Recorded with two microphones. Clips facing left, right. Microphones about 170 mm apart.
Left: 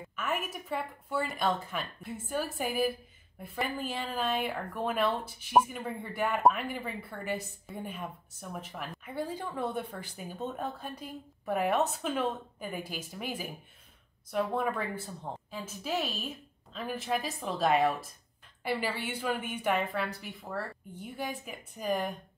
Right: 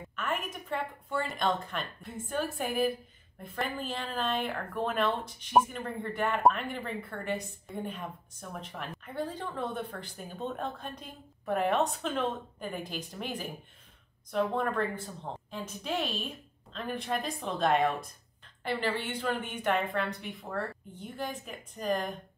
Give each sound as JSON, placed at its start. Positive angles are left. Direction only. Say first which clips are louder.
{"t": 0.1, "sound": "a woman's voice", "louder": "even", "side_deg": 5}